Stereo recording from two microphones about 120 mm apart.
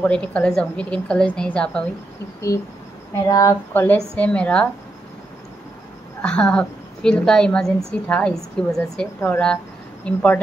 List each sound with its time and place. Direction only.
0.0 s a woman's voice: 10° left (ahead or behind)
2.5 s a sound: 30° left (ahead or behind)
3.7 s a woman's voice: 15° left (ahead or behind)
6.2 s a woman's voice: 10° left (ahead or behind)